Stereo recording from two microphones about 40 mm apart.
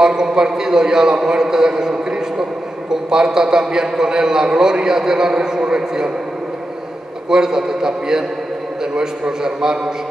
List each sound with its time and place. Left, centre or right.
0.0 s a man's voice: centre
7.2 s a man's voice: centre